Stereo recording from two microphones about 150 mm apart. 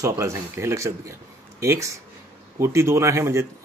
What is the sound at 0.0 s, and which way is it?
Speech, 20° right (ahead or behind).